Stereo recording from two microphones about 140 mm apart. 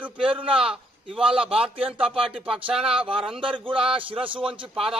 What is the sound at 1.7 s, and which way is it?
Speech, 40° right (ahead or behind).